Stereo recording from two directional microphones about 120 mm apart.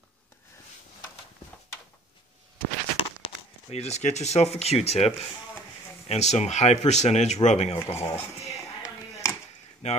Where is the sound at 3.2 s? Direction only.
60° left (ahead or behind).